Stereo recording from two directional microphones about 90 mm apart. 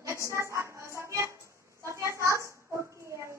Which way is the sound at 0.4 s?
35° right (ahead or behind).